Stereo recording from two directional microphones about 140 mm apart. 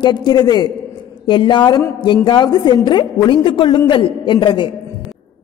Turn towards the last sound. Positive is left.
turn(degrees=35)  # may be behind; listen again after turning